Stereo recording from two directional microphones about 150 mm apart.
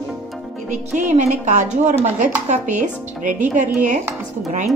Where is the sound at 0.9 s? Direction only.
50° right (ahead or behind).